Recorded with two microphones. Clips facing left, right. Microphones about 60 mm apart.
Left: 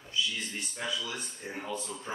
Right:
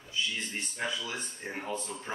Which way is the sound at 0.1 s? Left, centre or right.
Right.